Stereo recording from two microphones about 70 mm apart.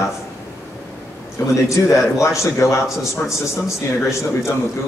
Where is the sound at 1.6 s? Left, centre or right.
Left.